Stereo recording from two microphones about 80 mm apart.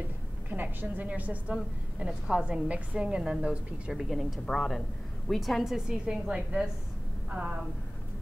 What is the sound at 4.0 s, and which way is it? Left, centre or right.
A woman's voice, centre.